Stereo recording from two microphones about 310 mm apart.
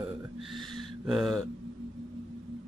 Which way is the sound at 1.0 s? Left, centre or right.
Centre.